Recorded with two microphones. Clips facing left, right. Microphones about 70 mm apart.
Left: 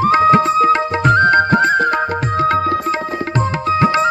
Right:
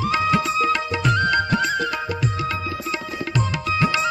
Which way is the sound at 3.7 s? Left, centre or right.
Left.